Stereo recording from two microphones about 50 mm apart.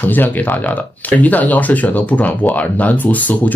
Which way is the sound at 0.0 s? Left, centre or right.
Left.